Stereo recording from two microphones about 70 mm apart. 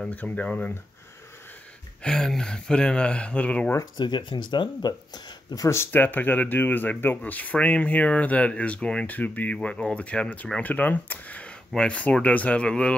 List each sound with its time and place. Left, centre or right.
0.1 s speech: left
2.0 s speech: centre
4.0 s speech: left
5.9 s speech: left